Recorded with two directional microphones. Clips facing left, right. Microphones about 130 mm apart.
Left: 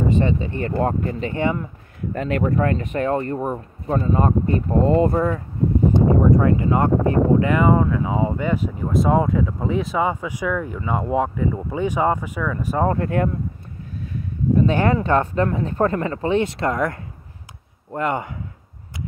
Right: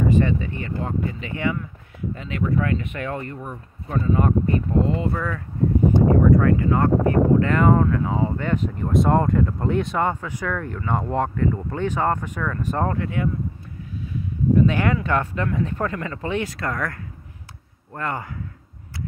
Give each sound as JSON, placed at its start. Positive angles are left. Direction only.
{"t": 0.1, "sound": "speech", "side_deg": 25}
{"t": 0.7, "sound": "speech", "side_deg": 45}
{"t": 1.3, "sound": "speech", "side_deg": 35}
{"t": 2.1, "sound": "speech", "side_deg": 50}
{"t": 5.9, "sound": "speech", "side_deg": 20}
{"t": 12.9, "sound": "speech", "side_deg": 45}
{"t": 14.7, "sound": "speech", "side_deg": 35}